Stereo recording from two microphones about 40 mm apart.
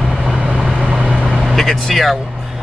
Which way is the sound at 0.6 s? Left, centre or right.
Right.